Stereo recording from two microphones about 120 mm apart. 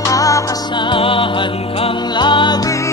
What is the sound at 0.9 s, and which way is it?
Music, 45° left (ahead or behind).